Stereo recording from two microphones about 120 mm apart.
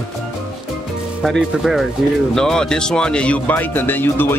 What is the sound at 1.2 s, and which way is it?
Speech, centre (ahead or behind).